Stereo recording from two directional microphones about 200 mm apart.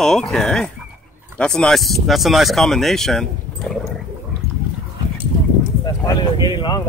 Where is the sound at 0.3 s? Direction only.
5° left (ahead or behind).